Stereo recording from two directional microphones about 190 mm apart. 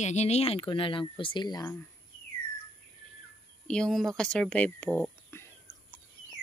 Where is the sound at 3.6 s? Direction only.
5° left (ahead or behind).